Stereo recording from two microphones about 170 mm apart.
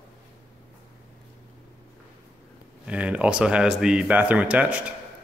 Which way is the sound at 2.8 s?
10° right (ahead or behind).